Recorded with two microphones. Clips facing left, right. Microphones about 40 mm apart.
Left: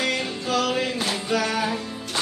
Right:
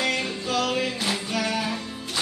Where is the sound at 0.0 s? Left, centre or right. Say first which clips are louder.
Even; centre.